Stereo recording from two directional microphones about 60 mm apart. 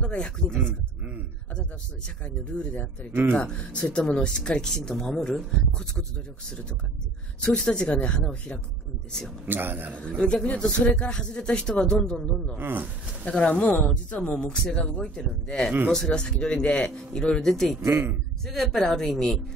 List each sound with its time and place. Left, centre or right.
0.0 s speech: centre
2.0 s speech: centre
3.1 s a man's voice: right
3.3 s speech: centre
7.4 s speech: centre
9.5 s a man's voice: right
9.9 s speech: centre
12.5 s a man's voice: right
13.2 s speech: centre
17.7 s a man's voice: right
18.4 s speech: centre